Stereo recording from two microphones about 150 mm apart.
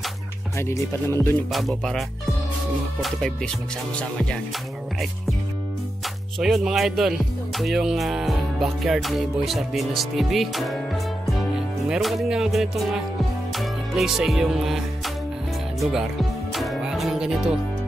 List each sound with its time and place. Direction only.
0.6 s speech: 15° left (ahead or behind)
1.5 s speech: centre (ahead or behind)
6.4 s speech: centre (ahead or behind)
13.6 s music: centre (ahead or behind)
15.8 s music: centre (ahead or behind)